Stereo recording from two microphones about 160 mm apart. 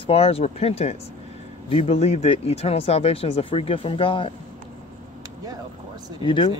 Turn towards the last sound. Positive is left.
turn(degrees=30)  # may be behind; listen again after turning